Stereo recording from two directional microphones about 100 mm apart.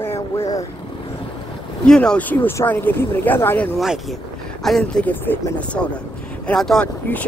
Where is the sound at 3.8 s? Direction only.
5° right (ahead or behind).